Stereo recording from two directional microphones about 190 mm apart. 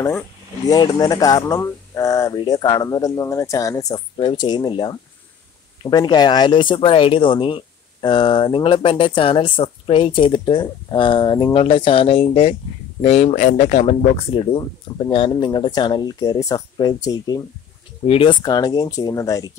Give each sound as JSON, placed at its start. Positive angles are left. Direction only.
{"t": 0.7, "sound": "speech", "side_deg": 20}